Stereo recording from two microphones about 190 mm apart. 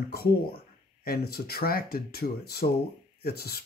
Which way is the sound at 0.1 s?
55° left (ahead or behind).